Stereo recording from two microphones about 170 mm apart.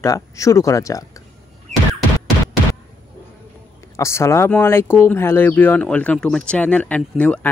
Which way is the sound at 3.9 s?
15° left (ahead or behind).